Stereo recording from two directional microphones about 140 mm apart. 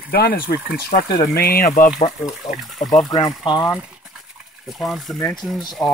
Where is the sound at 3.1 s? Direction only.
25° left (ahead or behind).